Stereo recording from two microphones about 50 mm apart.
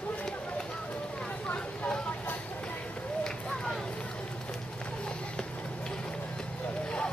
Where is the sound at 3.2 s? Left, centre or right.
Centre.